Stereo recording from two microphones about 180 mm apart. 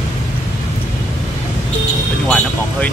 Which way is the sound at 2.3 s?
10° left (ahead or behind).